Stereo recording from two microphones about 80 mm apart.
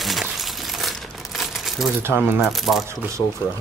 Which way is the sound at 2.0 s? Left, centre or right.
Right.